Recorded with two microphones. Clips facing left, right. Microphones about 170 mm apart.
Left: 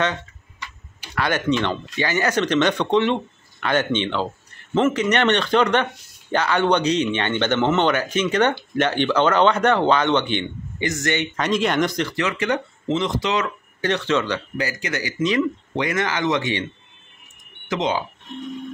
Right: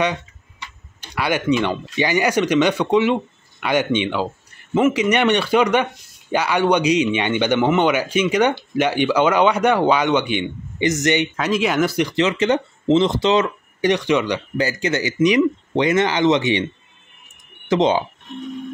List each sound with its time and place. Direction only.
1.1 s a man's voice: 10° right (ahead or behind)
11.3 s speech: 5° right (ahead or behind); by 13.5 s 25° right (ahead or behind)
13.7 s a man's voice: 15° right (ahead or behind)
14.6 s speech: 25° right (ahead or behind)
17.6 s speech: 30° right (ahead or behind)